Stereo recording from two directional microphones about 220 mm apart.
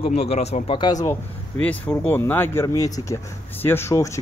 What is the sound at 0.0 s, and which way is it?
A man's voice, 30° left (ahead or behind).